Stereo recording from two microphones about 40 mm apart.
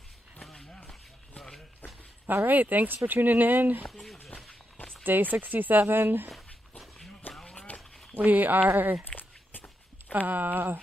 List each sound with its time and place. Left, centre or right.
2.4 s speech: right
3.8 s a sound: centre
5.0 s speech: right
7.3 s a sound: left
7.7 s walk: left
8.1 s speech: right
9.0 s walk: left
10.1 s speech: right